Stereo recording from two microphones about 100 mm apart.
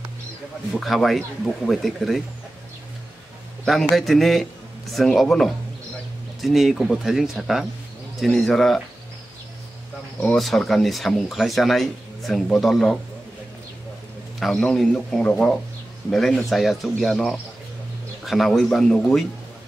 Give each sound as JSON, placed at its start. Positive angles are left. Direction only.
{"t": 0.7, "sound": "speech", "side_deg": 0}
{"t": 3.9, "sound": "speech", "side_deg": 0}
{"t": 10.3, "sound": "speech", "side_deg": 0}
{"t": 14.4, "sound": "a man's voice", "side_deg": 5}